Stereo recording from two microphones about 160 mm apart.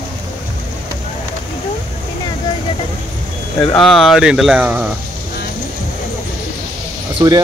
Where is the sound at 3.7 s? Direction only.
Centre (ahead or behind).